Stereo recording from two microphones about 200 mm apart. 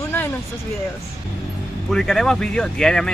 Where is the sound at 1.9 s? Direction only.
Centre (ahead or behind).